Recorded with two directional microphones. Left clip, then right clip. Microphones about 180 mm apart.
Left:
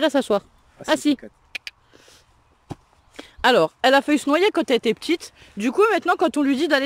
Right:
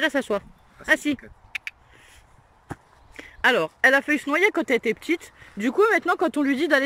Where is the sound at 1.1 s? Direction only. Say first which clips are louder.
Even; 40° left (ahead or behind).